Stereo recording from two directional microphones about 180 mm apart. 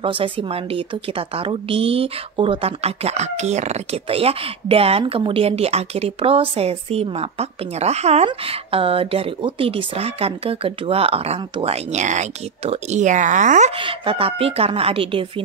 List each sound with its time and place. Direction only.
0.0 s a woman's voice: 30° right (ahead or behind)
13.7 s a woman's voice: 30° right (ahead or behind)